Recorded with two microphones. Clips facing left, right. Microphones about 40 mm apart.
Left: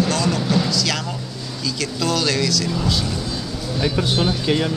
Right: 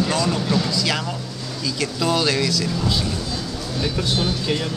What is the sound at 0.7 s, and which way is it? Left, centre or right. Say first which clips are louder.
Speech: even; centre.